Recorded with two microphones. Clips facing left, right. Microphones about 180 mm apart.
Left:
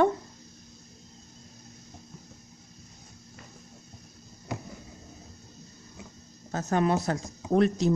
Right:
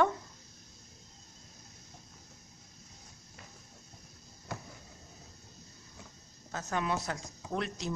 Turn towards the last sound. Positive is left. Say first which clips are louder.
# left 13 dB
turn(degrees=45)  # may be behind; listen again after turning